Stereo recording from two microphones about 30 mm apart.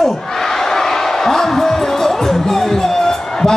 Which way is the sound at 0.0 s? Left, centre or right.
Centre.